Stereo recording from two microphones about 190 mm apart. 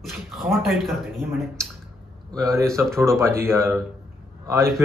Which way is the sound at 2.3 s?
15° right (ahead or behind).